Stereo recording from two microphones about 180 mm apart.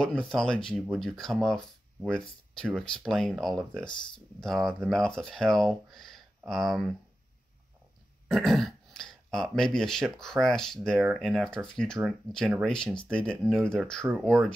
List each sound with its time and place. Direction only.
0.0 s speech: 5° left (ahead or behind)
3.8 s speech: 25° left (ahead or behind)
4.4 s speech: centre (ahead or behind)
8.3 s speech: centre (ahead or behind)